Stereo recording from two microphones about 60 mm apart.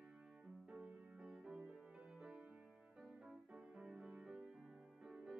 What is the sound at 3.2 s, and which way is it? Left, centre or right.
Music, centre.